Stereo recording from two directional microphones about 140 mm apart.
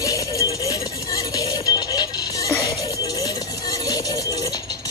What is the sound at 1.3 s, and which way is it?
Music, 30° left (ahead or behind).